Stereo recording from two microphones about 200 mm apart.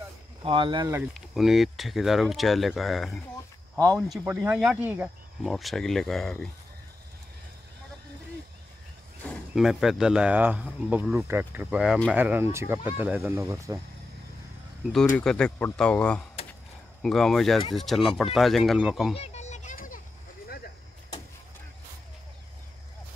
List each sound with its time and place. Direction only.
0.4 s speech: 25° right (ahead or behind)
1.1 s speech: centre (ahead or behind)
4.2 s speech: 10° right (ahead or behind)
9.2 s speech: centre (ahead or behind); by 13.7 s 15° right (ahead or behind)
15.1 s speech: 5° left (ahead or behind)
19.1 s children playing: 30° left (ahead or behind)